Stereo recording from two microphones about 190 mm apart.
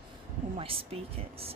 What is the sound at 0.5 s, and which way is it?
Speech, 30° right (ahead or behind).